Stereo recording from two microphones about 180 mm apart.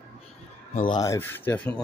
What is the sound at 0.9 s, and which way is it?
Speech, 20° left (ahead or behind).